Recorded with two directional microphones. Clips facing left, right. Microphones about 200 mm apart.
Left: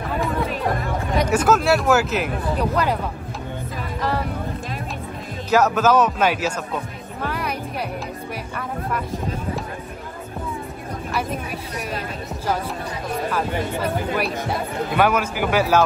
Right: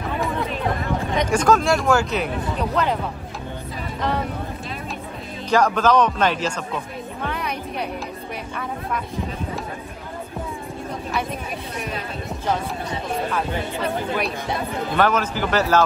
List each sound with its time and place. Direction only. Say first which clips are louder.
1.1 s speech: even; 5° left (ahead or behind)
5.5 s speech: left 1 dB; 5° left (ahead or behind)
7.2 s music: left 2 dB; 5° left (ahead or behind)
13.8 s speech: right 1 dB; 5° left (ahead or behind)